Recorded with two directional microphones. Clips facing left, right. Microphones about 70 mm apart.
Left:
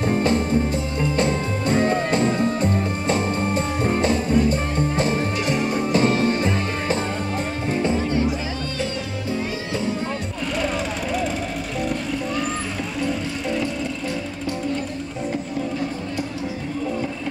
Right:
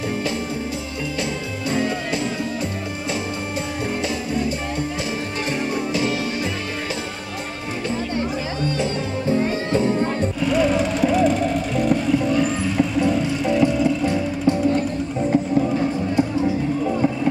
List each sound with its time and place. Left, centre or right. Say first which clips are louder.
0.2 s music: left 5 dB; left
1.9 s music: left 4 dB; left
5.9 s music: left 7 dB; left
10.5 s music: right 5 dB; centre